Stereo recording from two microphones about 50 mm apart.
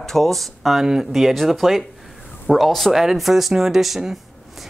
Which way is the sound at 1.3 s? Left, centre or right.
Centre.